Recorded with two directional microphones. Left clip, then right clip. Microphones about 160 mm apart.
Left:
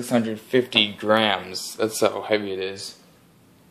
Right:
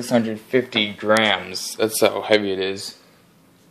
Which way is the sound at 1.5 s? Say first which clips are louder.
Right 3 dB; 10° right (ahead or behind).